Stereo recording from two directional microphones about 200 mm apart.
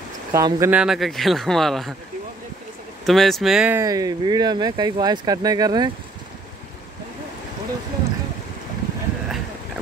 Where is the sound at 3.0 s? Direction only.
Centre (ahead or behind); by 5.9 s 20° right (ahead or behind).